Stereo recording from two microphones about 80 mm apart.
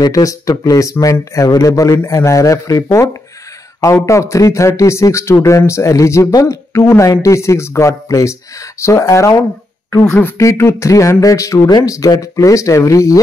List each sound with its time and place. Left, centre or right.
0.0 s speech: left
6.8 s speech: left
7.1 s speech: left